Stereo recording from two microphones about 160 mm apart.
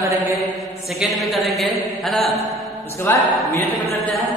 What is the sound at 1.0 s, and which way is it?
Mantra, centre (ahead or behind).